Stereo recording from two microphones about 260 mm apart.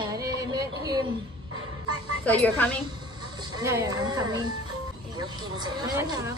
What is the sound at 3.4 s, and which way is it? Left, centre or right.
Speech, centre.